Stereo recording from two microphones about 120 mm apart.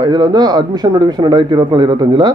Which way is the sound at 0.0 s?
35° right (ahead or behind).